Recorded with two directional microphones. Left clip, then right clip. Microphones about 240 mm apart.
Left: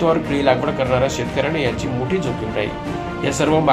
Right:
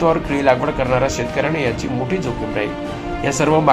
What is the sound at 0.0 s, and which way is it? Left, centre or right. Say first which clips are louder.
Speech: right 1 dB; centre.